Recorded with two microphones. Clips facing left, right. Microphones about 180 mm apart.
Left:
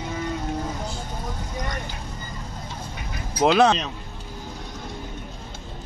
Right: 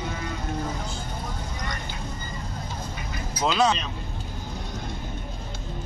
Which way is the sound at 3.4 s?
60° left (ahead or behind).